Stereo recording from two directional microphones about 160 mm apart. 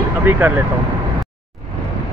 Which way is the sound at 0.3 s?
10° right (ahead or behind).